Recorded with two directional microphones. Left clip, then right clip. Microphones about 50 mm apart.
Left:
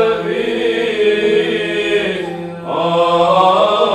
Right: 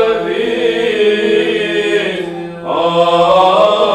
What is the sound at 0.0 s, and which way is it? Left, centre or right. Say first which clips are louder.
Chant: right 2 dB; centre.